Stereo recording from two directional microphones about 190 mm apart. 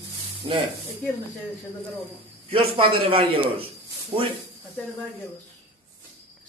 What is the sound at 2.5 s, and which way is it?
A man's voice, 30° right (ahead or behind).